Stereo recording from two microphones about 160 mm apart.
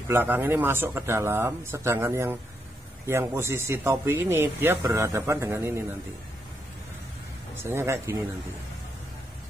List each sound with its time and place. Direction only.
0.1 s speech: 10° right (ahead or behind)
7.5 s speech: 15° right (ahead or behind)